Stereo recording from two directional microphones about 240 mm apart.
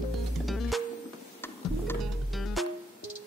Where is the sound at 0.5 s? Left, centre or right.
Centre.